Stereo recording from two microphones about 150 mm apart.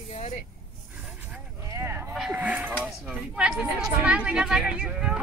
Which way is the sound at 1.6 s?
20° right (ahead or behind).